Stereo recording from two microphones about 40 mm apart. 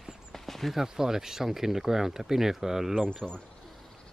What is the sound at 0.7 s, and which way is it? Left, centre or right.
Speech, centre.